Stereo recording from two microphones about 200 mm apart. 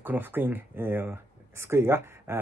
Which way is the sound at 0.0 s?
10° right (ahead or behind).